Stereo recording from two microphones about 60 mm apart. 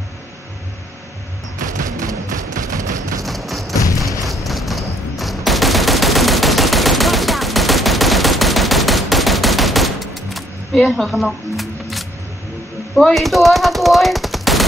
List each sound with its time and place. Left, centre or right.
2.0 s music: right
3.3 s a sound: centre
3.7 s a sound: left
4.3 s fusillade: centre
10.9 s camera: centre
13.1 s speech: centre